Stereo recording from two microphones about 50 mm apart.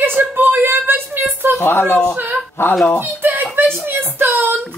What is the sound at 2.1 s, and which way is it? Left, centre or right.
Speech, right.